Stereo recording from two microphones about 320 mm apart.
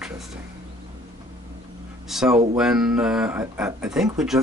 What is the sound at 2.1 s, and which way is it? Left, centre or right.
Speech, centre.